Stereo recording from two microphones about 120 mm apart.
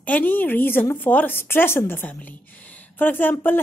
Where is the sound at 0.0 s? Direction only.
15° left (ahead or behind).